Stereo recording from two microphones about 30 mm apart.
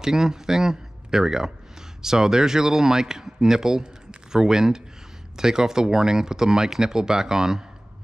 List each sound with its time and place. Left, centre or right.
0.0 s a man's voice: centre